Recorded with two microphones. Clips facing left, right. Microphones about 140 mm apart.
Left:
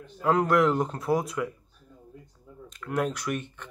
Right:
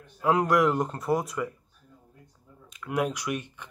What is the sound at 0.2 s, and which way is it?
Speech, 10° right (ahead or behind).